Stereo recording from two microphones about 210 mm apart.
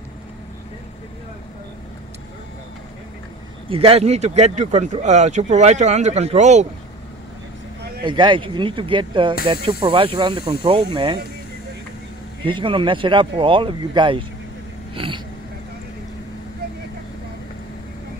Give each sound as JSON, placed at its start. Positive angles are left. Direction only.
{"t": 3.6, "sound": "speech", "side_deg": -25}
{"t": 8.0, "sound": "speech", "side_deg": -20}
{"t": 12.4, "sound": "speech", "side_deg": -25}